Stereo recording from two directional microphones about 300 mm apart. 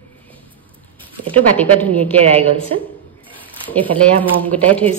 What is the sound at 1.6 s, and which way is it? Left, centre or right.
Speech, centre.